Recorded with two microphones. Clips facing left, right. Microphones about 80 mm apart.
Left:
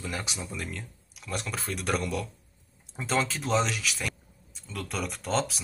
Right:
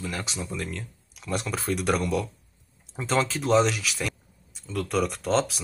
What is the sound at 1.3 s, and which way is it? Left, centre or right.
Speech, centre.